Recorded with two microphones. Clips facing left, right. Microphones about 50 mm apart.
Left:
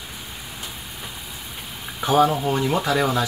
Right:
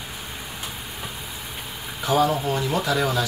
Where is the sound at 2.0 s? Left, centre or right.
Left.